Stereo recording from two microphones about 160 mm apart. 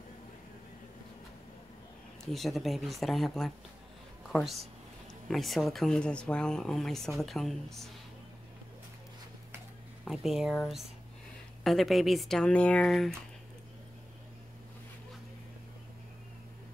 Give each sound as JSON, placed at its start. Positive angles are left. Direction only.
{"t": 2.3, "sound": "speech", "side_deg": 0}
{"t": 10.0, "sound": "speech", "side_deg": 0}
{"t": 11.6, "sound": "speech", "side_deg": 0}